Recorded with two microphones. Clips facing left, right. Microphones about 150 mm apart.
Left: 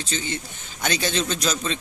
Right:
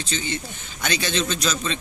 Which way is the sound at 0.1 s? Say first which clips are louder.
Right 1 dB; 40° left (ahead or behind).